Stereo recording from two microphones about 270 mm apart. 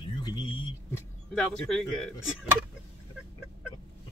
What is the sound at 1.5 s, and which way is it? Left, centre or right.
Speech, centre.